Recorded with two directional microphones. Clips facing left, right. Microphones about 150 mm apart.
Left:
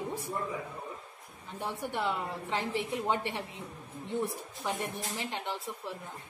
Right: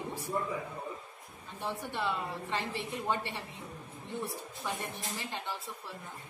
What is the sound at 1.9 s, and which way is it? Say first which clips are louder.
A woman's voice: left 2 dB; 15° left (ahead or behind).